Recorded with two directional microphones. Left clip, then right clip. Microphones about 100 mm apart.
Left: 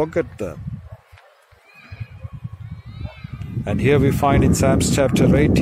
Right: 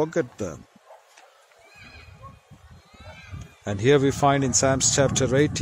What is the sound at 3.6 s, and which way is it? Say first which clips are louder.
Speech: left 2 dB; 20° right (ahead or behind).